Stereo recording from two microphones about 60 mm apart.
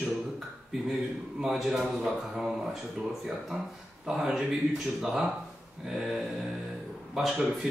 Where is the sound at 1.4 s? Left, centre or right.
Centre.